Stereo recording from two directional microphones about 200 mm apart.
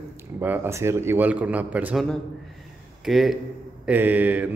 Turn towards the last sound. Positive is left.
turn(degrees=-10)  # may be behind; listen again after turning